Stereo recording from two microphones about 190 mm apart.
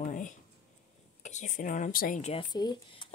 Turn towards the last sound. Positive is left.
turn(degrees=25)  # may be behind; listen again after turning